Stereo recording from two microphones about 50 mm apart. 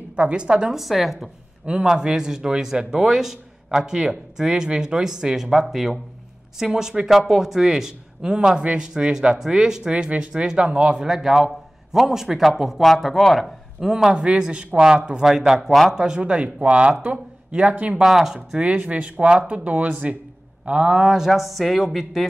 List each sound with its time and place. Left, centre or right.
0.1 s speech: right
0.7 s a woman's voice: centre
1.7 s speech: centre
12.8 s a woman's voice: centre
15.2 s speech: centre; by 18.0 s right
18.0 s speech: centre
18.5 s speech: right
21.3 s a woman's voice: centre